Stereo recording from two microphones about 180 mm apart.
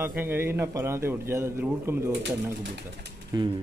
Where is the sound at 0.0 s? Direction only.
10° right (ahead or behind).